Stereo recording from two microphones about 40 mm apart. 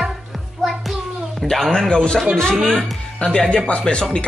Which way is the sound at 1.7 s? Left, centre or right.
Centre.